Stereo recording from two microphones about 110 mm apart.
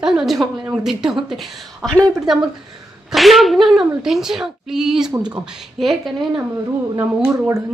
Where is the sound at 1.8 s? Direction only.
10° left (ahead or behind).